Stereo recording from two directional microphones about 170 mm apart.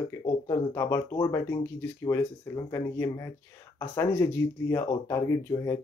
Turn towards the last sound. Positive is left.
turn(degrees=20)  # may be behind; listen again after turning